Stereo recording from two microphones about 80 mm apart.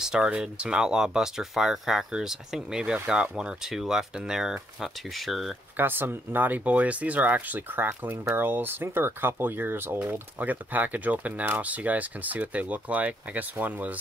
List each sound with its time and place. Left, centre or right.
0.0 s speech: centre
5.8 s speech: right